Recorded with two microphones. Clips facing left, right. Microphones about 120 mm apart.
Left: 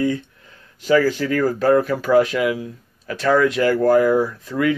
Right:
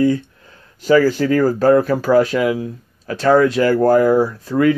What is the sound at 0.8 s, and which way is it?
Speech, 40° right (ahead or behind).